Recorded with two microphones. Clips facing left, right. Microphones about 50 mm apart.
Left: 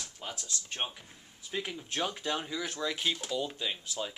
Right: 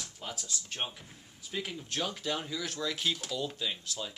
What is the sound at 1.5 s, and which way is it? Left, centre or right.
Speech, centre.